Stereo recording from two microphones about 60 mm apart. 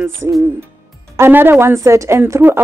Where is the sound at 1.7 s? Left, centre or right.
Right.